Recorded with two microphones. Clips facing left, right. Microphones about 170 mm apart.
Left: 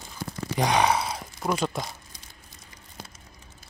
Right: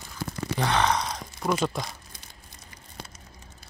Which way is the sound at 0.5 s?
15° left (ahead or behind).